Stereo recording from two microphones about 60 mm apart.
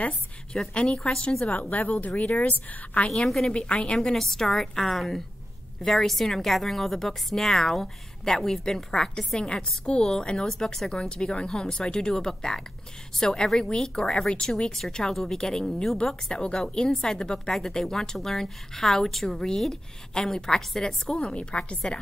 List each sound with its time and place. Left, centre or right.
0.5 s a woman's voice: centre